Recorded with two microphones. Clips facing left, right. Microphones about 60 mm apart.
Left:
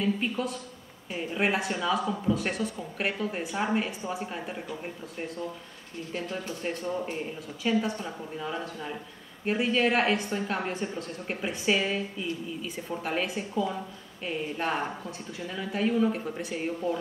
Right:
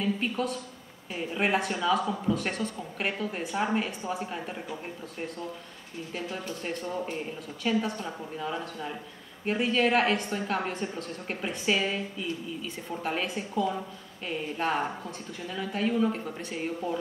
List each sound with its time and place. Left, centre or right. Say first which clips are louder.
0.0 s a woman's voice: even; centre